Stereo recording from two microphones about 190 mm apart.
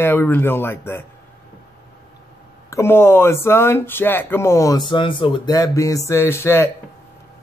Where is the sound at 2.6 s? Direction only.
15° left (ahead or behind).